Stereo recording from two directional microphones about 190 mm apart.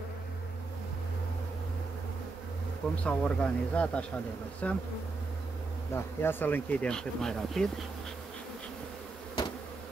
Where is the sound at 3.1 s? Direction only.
5° left (ahead or behind).